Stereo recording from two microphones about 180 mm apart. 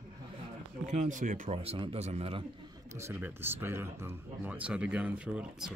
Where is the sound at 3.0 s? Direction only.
15° right (ahead or behind).